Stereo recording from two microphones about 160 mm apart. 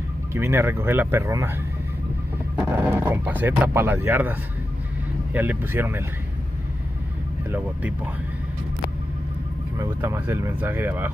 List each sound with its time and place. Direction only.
0.3 s speech: 15° right (ahead or behind)
2.5 s speech: 10° right (ahead or behind)
9.8 s speech: 15° right (ahead or behind)